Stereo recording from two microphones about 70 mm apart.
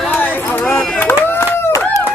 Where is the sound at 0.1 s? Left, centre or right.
Left.